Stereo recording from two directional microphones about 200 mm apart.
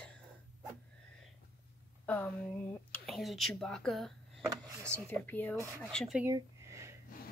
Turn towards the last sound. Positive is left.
turn(degrees=-15)  # may be behind; listen again after turning